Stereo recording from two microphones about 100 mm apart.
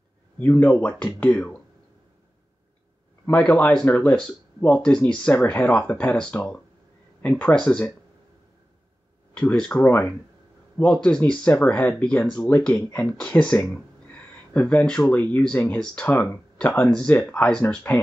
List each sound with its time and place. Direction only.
0.4 s speech: 15° left (ahead or behind)
3.3 s speech: 15° left (ahead or behind)
9.3 s speech: 10° left (ahead or behind)